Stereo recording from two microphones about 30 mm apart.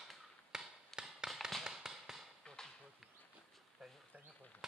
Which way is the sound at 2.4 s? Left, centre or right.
Centre.